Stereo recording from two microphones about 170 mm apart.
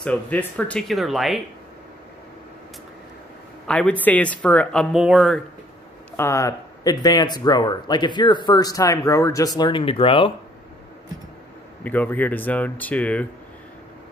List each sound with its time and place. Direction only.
0.0 s speech: 10° left (ahead or behind)
3.6 s speech: 5° left (ahead or behind)
6.1 s speech: 15° left (ahead or behind)
11.8 s speech: 10° left (ahead or behind)